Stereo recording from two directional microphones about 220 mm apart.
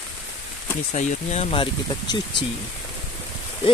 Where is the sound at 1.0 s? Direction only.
30° left (ahead or behind).